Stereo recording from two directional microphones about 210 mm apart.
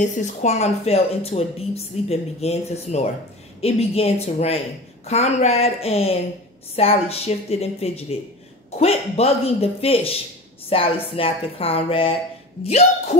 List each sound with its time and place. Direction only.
0.0 s a woman's voice: 35° left (ahead or behind)